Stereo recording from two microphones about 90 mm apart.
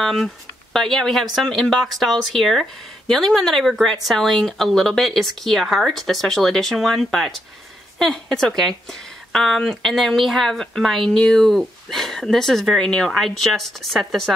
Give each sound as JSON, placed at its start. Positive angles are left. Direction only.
{"t": 0.0, "sound": "speech", "side_deg": 0}